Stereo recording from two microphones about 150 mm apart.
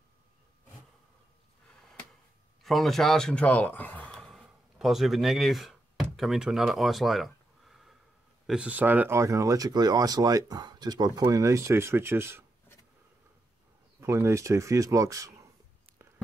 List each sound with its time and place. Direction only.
2.6 s speech: centre (ahead or behind); by 12.4 s 15° right (ahead or behind)
14.0 s speech: 20° right (ahead or behind)